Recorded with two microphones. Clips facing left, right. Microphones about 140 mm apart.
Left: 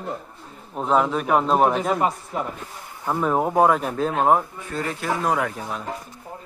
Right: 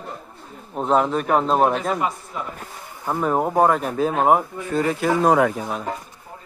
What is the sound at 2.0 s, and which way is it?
Speech, 35° left (ahead or behind).